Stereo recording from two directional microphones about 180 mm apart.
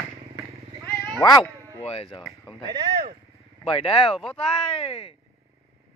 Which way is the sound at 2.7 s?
25° right (ahead or behind).